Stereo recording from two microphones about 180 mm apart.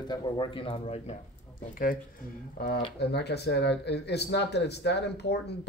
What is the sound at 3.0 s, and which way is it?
Speech, 65° left (ahead or behind).